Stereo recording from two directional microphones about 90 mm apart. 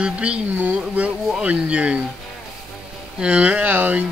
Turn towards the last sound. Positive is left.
turn(degrees=-15)  # may be behind; listen again after turning